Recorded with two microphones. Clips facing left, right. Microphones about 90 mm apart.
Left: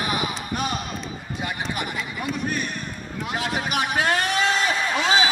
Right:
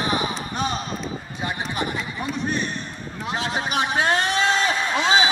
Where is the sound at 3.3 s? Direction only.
25° right (ahead or behind).